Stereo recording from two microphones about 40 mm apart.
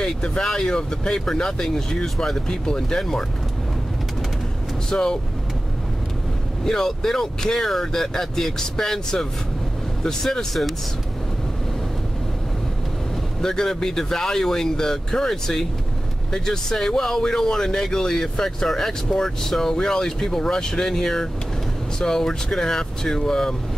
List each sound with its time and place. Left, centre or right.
0.0 s speech: centre
4.8 s speech: centre
6.6 s speech: centre
13.4 s speech: centre